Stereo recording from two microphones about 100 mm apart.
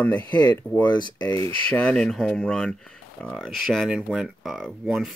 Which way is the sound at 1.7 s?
10° left (ahead or behind).